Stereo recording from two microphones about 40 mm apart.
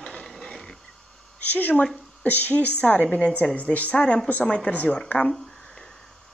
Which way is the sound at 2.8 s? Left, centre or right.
Left.